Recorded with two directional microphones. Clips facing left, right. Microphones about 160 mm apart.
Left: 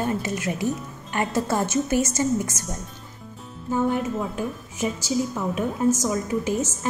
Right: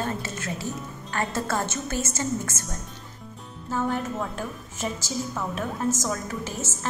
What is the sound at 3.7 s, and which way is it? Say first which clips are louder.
A woman's voice: left 4 dB; 10° left (ahead or behind).